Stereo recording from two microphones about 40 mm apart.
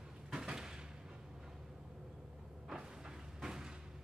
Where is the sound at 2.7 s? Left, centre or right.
Centre.